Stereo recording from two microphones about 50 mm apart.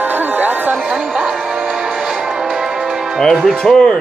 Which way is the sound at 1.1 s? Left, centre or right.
Centre.